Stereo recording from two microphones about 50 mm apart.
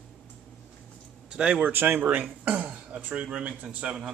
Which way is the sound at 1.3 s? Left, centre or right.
Right.